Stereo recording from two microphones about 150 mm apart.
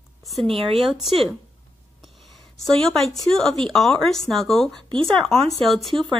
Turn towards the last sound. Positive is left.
turn(degrees=0)  # may be behind; listen again after turning